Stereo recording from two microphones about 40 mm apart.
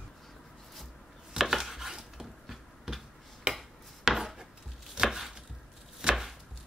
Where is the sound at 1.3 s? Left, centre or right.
Centre.